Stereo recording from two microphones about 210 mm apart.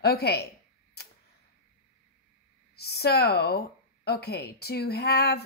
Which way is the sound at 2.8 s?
50° left (ahead or behind).